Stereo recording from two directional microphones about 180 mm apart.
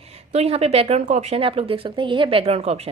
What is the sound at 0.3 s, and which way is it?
A woman's voice, 35° right (ahead or behind).